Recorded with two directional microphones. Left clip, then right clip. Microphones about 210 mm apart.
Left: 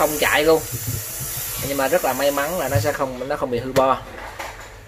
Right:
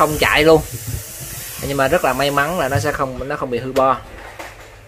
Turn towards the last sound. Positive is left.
turn(degrees=-20)  # may be behind; listen again after turning